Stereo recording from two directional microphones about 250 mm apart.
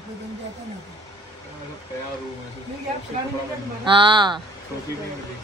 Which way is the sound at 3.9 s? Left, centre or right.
Centre.